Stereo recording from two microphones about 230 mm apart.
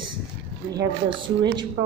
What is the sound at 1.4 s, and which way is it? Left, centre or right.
Speech, centre.